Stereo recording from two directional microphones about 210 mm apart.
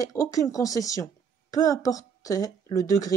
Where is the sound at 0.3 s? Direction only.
15° left (ahead or behind).